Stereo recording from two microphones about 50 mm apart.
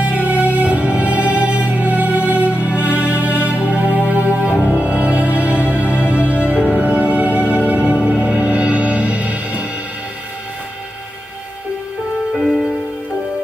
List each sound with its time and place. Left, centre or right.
0.0 s music: right
12.3 s music: centre